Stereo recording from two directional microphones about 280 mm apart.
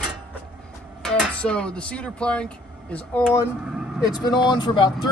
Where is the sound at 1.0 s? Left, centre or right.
Centre.